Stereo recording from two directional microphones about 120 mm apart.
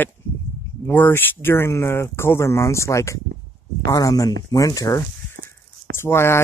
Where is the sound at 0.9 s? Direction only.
15° left (ahead or behind).